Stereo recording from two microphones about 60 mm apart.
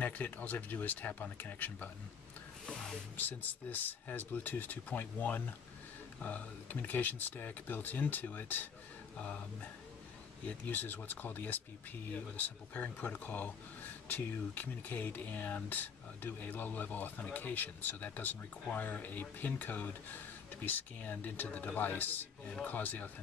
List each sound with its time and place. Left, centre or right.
0.0 s speech: left
2.6 s music: centre
3.2 s speech: left
10.4 s speech: left